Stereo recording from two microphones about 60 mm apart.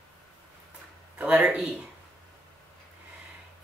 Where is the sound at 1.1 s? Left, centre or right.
Right.